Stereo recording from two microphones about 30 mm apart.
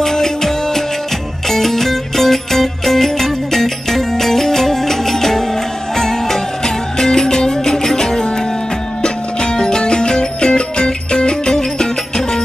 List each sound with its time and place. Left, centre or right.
0.0 s music: centre